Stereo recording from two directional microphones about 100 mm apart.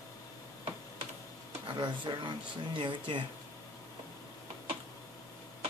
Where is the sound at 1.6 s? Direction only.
55° right (ahead or behind).